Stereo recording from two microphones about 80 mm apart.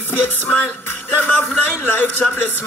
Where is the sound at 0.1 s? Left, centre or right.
Left.